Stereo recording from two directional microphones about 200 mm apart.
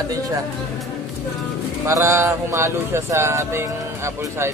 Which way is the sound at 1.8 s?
15° right (ahead or behind).